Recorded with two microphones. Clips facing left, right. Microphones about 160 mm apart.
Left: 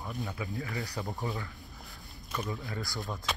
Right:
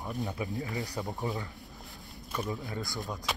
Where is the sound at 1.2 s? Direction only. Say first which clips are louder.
Right 2 dB; 20° right (ahead or behind).